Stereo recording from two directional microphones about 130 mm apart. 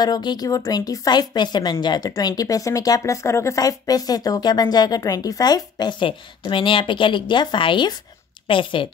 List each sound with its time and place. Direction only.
0.0 s a woman's voice: 35° left (ahead or behind)